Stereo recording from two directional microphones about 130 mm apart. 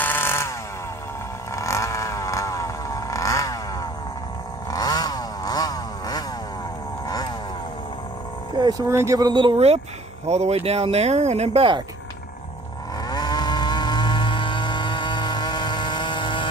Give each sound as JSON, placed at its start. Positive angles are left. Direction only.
{"t": 0.0, "sound": "chainsaw", "side_deg": 15}
{"t": 1.5, "sound": "vehicle", "side_deg": 25}
{"t": 4.6, "sound": "a sound", "side_deg": 30}
{"t": 8.5, "sound": "a sound", "side_deg": -35}
{"t": 8.8, "sound": "speech", "side_deg": -25}
{"t": 10.2, "sound": "speech", "side_deg": -60}
{"t": 13.1, "sound": "vehicle", "side_deg": 30}